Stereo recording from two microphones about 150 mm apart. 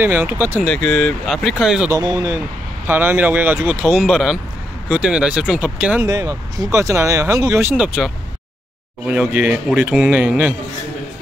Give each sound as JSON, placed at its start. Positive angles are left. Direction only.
{"t": 0.0, "sound": "speech", "side_deg": -15}
{"t": 0.6, "sound": "speech", "side_deg": 5}
{"t": 1.9, "sound": "speech", "side_deg": -25}
{"t": 6.0, "sound": "speech", "side_deg": -25}